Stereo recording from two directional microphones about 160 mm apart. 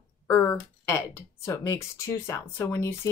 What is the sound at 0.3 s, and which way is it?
A woman's voice, 10° left (ahead or behind).